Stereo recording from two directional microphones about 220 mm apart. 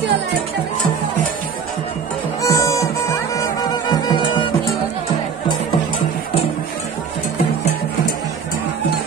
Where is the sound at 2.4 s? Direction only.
15° left (ahead or behind).